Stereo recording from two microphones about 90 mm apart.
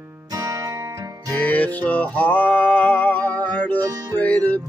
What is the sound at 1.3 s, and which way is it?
Music, 15° left (ahead or behind).